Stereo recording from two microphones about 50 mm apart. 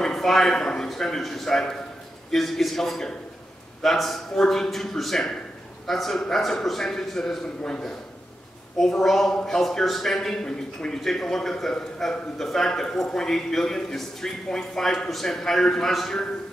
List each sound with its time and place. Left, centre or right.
0.0 s a man's voice: centre